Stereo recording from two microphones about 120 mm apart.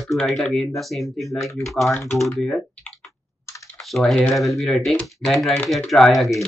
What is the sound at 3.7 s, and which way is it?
Typing, centre (ahead or behind).